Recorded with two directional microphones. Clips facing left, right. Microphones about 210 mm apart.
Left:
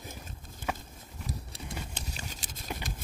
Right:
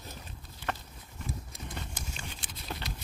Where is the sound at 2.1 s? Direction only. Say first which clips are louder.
Left 1 dB; 40° left (ahead or behind).